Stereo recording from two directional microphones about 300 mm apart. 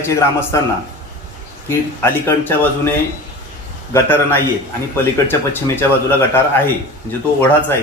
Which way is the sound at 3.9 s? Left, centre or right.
Centre.